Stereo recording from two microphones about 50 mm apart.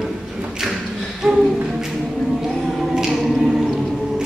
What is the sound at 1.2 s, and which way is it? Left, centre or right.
Music, centre.